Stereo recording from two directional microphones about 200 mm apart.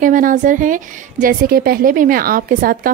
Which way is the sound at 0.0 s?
40° right (ahead or behind).